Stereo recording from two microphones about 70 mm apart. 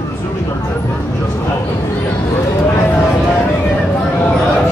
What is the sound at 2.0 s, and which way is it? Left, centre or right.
Speech, left.